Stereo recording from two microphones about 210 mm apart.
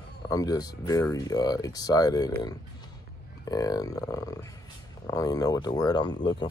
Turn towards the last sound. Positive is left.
turn(degrees=20)  # may be behind; listen again after turning